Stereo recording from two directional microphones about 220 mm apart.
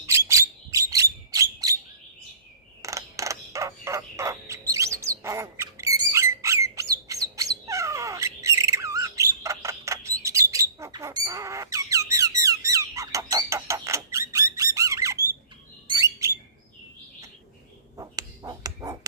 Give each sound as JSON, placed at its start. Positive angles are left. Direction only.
{"t": 0.0, "sound": "a sound", "side_deg": -15}
{"t": 2.8, "sound": "crow", "side_deg": -15}
{"t": 15.9, "sound": "bird", "side_deg": -15}
{"t": 17.9, "sound": "ping", "side_deg": -15}